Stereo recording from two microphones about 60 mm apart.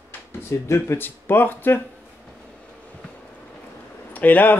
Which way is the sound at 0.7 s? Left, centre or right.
Left.